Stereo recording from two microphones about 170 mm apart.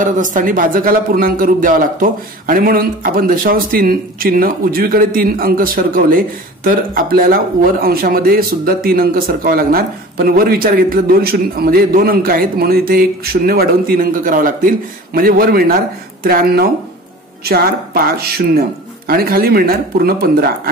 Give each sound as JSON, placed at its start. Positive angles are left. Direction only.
{"t": 0.0, "sound": "a man's voice", "side_deg": -50}